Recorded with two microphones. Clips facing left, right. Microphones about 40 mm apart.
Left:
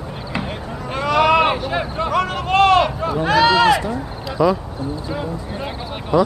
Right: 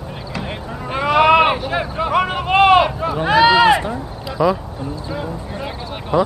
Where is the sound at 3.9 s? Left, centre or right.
Centre.